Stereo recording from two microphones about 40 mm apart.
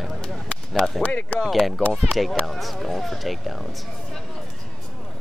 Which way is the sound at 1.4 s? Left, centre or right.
Centre.